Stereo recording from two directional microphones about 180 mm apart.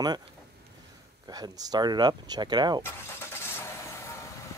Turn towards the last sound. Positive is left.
turn(degrees=15)  # may be behind; listen again after turning